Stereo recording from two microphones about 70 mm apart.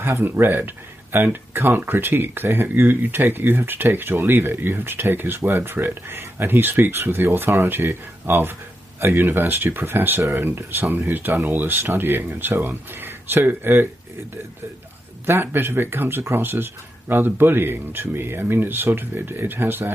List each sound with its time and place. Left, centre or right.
0.0 s speech: right
15.2 s speech: right